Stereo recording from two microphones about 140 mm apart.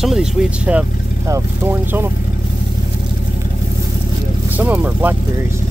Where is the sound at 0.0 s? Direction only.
5° right (ahead or behind).